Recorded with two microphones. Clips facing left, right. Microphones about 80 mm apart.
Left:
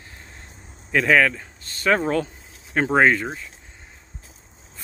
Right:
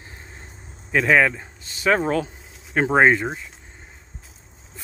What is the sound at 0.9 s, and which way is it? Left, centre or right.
Speech, centre.